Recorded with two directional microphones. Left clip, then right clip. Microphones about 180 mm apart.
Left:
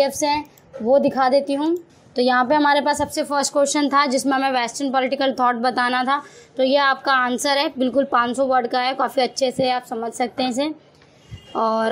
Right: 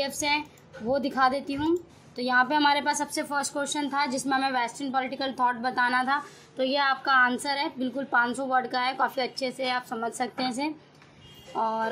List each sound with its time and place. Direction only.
0.0 s a woman's voice: 20° left (ahead or behind)
11.5 s speech: 35° left (ahead or behind)